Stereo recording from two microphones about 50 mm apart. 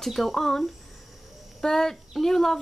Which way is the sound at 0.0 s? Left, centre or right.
Centre.